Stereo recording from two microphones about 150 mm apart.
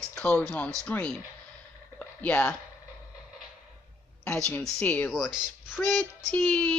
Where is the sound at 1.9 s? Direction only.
10° left (ahead or behind).